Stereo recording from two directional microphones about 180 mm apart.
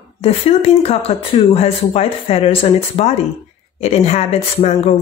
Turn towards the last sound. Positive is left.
turn(degrees=35)  # may be behind; listen again after turning